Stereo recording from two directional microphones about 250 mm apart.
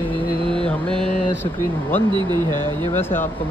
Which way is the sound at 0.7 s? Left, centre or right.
Centre.